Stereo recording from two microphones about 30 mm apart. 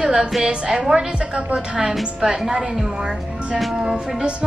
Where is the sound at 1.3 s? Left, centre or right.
Right.